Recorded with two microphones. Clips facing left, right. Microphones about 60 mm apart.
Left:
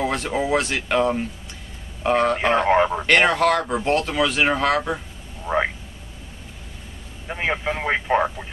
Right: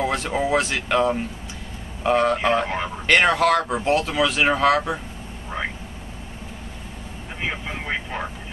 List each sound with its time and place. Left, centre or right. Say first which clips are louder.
0.0 s a man's voice: even; centre
2.7 s speech: left 10 dB; left
3.1 s speech: right 3 dB; centre
7.3 s speech: left 5 dB; left